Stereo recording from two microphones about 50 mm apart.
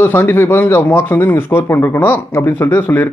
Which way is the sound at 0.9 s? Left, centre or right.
Left.